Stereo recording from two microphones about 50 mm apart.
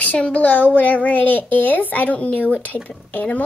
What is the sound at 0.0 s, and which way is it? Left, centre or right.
A child's voice, left.